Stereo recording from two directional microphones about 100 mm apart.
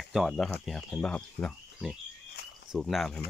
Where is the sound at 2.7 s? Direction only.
Centre (ahead or behind).